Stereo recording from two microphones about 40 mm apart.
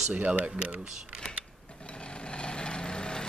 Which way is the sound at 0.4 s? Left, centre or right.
Right.